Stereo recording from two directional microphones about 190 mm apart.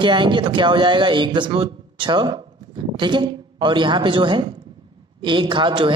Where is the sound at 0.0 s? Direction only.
25° right (ahead or behind).